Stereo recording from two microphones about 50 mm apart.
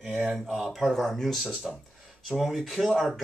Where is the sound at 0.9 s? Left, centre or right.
Centre.